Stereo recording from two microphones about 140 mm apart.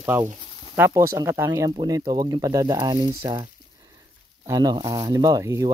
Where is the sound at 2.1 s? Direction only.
30° right (ahead or behind).